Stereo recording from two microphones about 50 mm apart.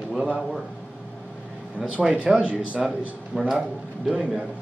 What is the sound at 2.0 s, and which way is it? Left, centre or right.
Speech, centre.